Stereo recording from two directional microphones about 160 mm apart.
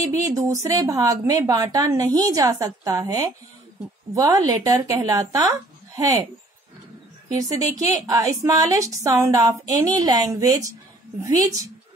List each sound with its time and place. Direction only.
0.1 s a woman's voice: 20° right (ahead or behind)
7.3 s a woman's voice: 20° right (ahead or behind)